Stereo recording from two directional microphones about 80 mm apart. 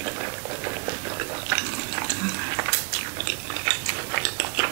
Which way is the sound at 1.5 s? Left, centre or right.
Right.